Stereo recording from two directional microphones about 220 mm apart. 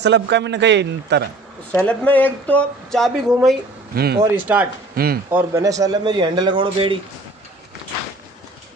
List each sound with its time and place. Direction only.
0.0 s a man's voice: 50° right (ahead or behind)
1.7 s speech: 5° left (ahead or behind)
3.9 s speech: 45° right (ahead or behind)
4.2 s speech: 10° right (ahead or behind)
4.9 s speech: 45° right (ahead or behind)
5.3 s a man's voice: 15° right (ahead or behind)